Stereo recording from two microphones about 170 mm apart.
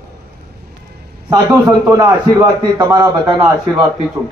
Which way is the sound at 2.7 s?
25° right (ahead or behind).